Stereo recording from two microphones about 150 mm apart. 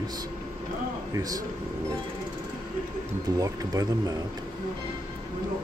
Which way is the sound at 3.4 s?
25° right (ahead or behind).